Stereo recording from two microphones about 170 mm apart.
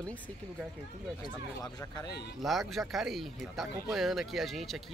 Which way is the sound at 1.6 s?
20° left (ahead or behind).